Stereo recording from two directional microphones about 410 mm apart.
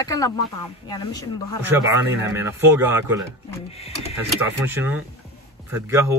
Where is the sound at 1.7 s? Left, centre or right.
Centre.